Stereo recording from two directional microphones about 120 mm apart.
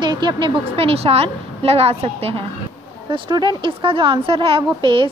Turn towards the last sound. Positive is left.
turn(degrees=-45)  # may be behind; listen again after turning